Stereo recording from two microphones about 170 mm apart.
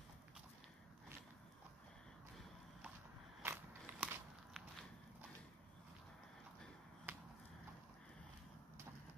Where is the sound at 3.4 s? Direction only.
10° right (ahead or behind).